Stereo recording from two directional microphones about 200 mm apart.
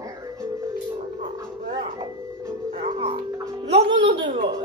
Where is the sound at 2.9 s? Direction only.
25° right (ahead or behind).